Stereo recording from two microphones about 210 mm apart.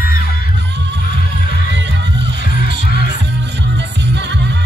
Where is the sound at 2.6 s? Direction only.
45° left (ahead or behind).